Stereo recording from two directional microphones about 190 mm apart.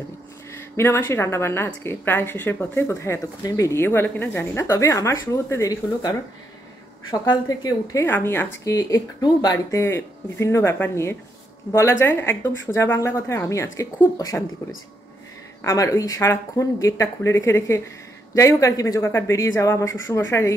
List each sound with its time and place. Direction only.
0.5 s speech: 15° left (ahead or behind)
15.6 s speech: 15° left (ahead or behind)